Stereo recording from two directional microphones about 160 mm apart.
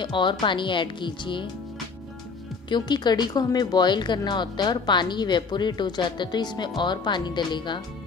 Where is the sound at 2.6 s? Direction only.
25° left (ahead or behind).